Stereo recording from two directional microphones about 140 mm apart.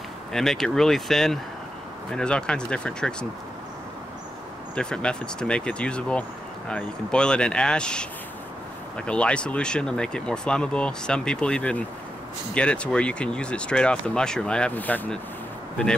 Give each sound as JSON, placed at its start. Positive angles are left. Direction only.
{"t": 0.3, "sound": "speech", "side_deg": 5}
{"t": 4.7, "sound": "speech", "side_deg": 5}